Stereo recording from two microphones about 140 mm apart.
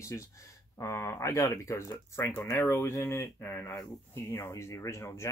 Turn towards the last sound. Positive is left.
turn(degrees=20)  # may be behind; listen again after turning